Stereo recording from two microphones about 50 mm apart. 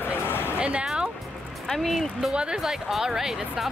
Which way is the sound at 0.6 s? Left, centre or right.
Right.